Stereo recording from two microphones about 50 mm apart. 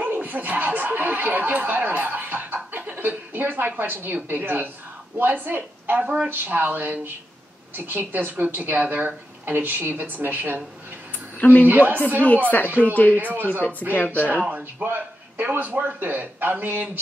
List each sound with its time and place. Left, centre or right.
0.0 s a man's voice: right
11.3 s a woman's voice: left
11.6 s a man's voice: right
12.4 s speech: left
13.2 s a man's voice: right
13.5 s speech: left
14.5 s a man's voice: right